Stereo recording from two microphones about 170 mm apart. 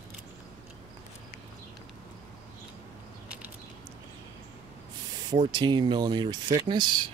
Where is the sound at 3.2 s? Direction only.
5° right (ahead or behind).